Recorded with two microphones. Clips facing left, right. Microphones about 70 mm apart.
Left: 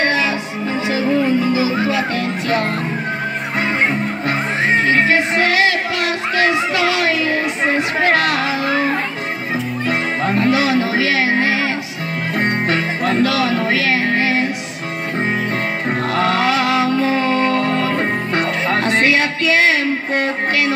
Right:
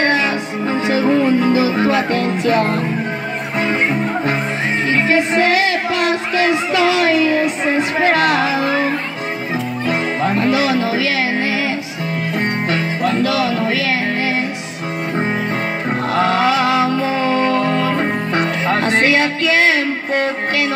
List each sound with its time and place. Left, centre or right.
0.7 s music: right
2.5 s music: right
4.8 s music: left
5.5 s music: right
6.7 s a sound: right
8.2 s music: right
10.2 s speech: right
10.5 s a sound: left
12.4 s music: left
16.2 s music: right
17.3 s music: left
18.3 s music: right